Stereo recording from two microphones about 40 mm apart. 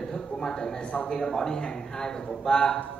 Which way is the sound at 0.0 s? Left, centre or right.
Centre.